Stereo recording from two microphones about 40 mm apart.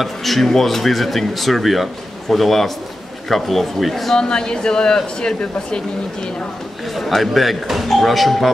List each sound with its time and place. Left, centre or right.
0.0 s speech: centre
4.2 s speech: centre
7.0 s speech: centre